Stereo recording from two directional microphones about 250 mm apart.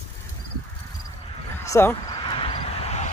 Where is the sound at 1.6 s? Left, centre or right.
Centre.